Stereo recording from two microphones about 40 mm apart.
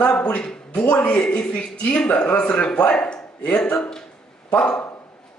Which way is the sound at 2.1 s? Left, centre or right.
Left.